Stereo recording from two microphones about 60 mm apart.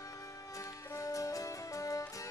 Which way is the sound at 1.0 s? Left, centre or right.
Left.